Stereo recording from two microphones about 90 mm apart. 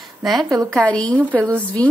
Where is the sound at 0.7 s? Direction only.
10° left (ahead or behind).